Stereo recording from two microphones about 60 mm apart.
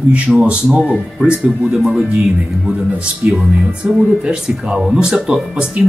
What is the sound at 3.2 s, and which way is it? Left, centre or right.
Speech, right.